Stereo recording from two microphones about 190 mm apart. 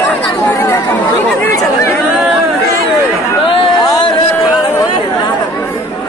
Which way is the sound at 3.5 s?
25° left (ahead or behind).